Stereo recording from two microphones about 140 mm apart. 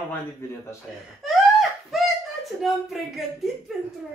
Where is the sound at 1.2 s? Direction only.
Centre (ahead or behind).